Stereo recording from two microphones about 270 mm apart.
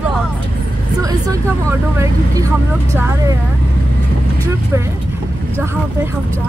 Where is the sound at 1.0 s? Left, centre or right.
Centre.